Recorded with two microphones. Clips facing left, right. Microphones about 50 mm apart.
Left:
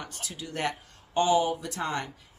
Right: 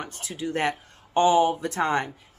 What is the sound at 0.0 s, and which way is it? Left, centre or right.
Speech, right.